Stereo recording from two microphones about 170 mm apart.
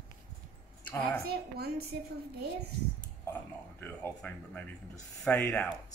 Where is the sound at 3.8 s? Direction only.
10° left (ahead or behind).